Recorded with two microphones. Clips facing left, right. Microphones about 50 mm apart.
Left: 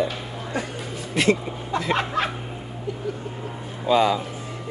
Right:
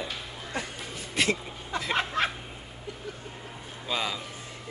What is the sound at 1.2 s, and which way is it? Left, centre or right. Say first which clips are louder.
Speech: left 7 dB; centre.